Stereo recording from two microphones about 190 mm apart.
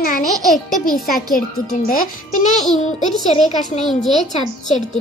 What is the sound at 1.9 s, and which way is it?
Speech, 50° left (ahead or behind).